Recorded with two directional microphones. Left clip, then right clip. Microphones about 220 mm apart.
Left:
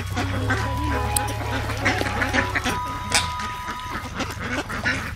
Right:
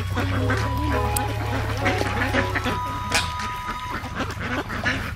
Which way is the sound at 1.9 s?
35° left (ahead or behind).